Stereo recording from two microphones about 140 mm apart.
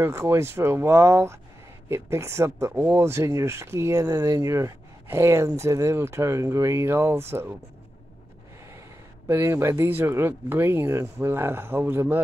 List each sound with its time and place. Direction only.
0.0 s speech: 20° right (ahead or behind)
9.3 s speech: 20° right (ahead or behind)